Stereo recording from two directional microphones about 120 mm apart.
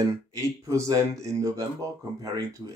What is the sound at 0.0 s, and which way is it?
Speech, 30° right (ahead or behind).